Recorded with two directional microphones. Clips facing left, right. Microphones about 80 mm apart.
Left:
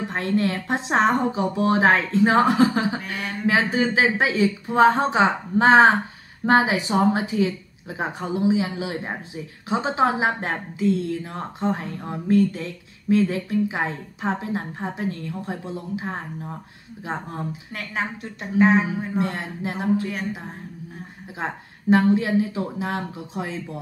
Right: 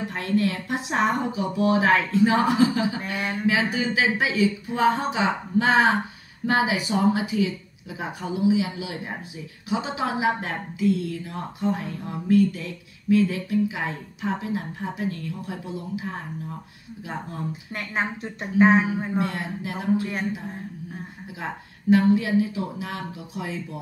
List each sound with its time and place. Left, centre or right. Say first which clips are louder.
0.1 s a woman's voice: left 1 dB; left
17.7 s speech: right 1 dB; right
19.1 s a woman's voice: left 1 dB; left
20.0 s speech: even; right
21.4 s a woman's voice: left 4 dB; left